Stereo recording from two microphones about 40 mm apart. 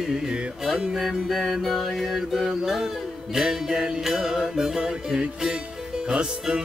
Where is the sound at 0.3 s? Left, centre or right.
Right.